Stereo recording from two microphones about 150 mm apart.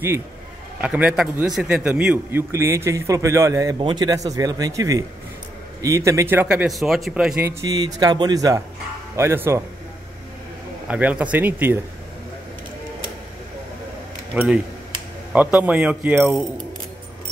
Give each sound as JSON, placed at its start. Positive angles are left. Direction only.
{"t": 0.7, "sound": "a man's voice", "side_deg": -10}
{"t": 2.5, "sound": "a man's voice", "side_deg": -20}
{"t": 7.4, "sound": "a man's voice", "side_deg": -25}
{"t": 10.9, "sound": "speech", "side_deg": -10}
{"t": 14.3, "sound": "speech", "side_deg": -5}